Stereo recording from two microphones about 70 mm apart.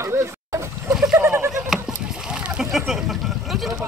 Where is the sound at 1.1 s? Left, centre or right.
Right.